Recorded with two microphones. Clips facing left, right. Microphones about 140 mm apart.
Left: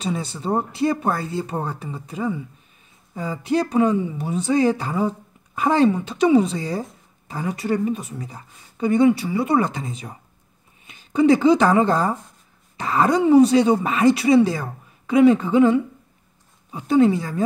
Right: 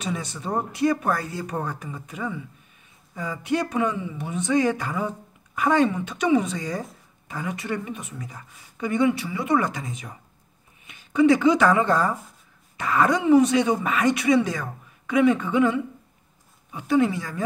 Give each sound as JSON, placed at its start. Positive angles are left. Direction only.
{"t": 0.0, "sound": "speech", "side_deg": 30}